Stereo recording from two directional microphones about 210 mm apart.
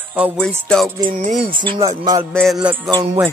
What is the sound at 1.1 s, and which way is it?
Music, 40° right (ahead or behind).